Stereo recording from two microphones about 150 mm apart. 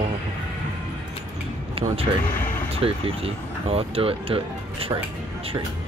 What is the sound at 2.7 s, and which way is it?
Speech, 40° right (ahead or behind).